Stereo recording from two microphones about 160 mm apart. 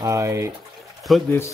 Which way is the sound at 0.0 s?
20° right (ahead or behind).